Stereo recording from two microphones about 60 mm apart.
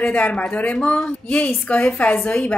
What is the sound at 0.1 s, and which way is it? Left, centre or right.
A woman's voice, left.